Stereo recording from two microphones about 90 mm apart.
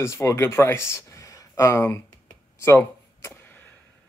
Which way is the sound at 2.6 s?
25° left (ahead or behind).